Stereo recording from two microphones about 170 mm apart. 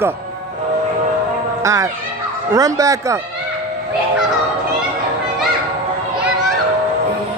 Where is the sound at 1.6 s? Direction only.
20° right (ahead or behind).